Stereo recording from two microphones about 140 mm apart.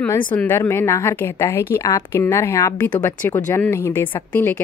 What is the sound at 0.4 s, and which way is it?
A woman's voice, 15° left (ahead or behind).